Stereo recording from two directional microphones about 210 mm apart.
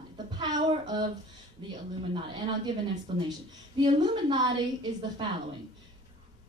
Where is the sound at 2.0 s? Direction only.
25° right (ahead or behind).